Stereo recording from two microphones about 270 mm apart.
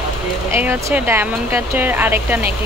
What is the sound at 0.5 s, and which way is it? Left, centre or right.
Speech, centre.